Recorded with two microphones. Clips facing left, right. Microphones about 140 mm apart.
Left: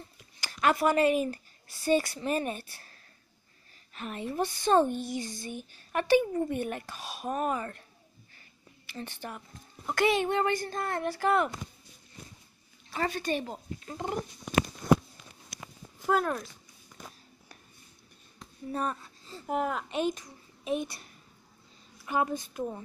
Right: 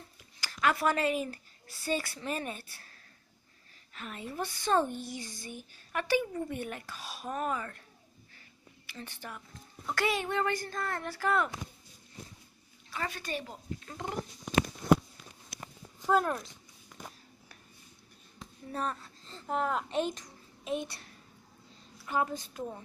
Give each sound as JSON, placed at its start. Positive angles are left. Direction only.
{"t": 0.4, "sound": "a sound", "side_deg": 25}
{"t": 0.7, "sound": "speech", "side_deg": 15}
{"t": 4.0, "sound": "speech", "side_deg": 25}
{"t": 8.9, "sound": "speech", "side_deg": 25}
{"t": 12.9, "sound": "speech", "side_deg": 30}
{"t": 16.1, "sound": "speech", "side_deg": -5}
{"t": 18.7, "sound": "a child's voice", "side_deg": 15}